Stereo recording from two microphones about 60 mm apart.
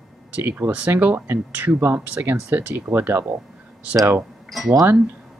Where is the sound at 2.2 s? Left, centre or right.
Right.